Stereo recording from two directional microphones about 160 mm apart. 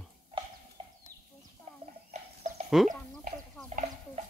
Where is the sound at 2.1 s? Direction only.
45° right (ahead or behind).